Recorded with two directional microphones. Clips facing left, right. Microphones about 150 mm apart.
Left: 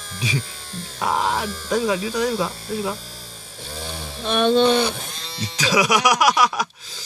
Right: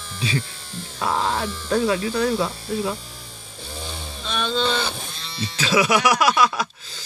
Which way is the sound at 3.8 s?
60° left (ahead or behind).